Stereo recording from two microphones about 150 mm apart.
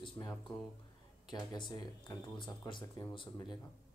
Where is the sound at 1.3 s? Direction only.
30° left (ahead or behind).